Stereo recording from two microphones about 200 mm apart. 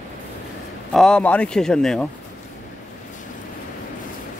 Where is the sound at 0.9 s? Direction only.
5° left (ahead or behind).